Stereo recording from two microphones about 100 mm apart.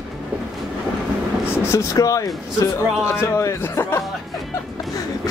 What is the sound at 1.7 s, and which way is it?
Speech, 35° left (ahead or behind).